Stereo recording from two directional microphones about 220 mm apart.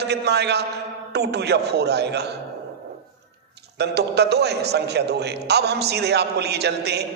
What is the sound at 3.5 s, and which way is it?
A man's voice, 50° right (ahead or behind).